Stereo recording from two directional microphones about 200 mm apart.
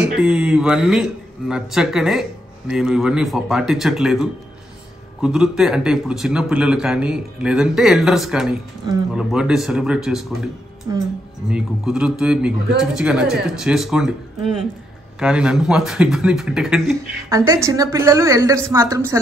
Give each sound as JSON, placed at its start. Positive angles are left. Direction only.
{"t": 0.1, "sound": "a man's voice", "side_deg": -5}
{"t": 15.1, "sound": "a man's voice", "side_deg": -5}
{"t": 16.9, "sound": "a woman's voice", "side_deg": -15}